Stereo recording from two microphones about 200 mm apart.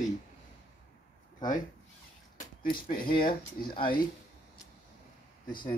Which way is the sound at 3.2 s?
25° left (ahead or behind).